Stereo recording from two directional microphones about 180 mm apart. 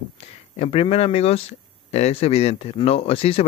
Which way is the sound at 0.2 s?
35° left (ahead or behind).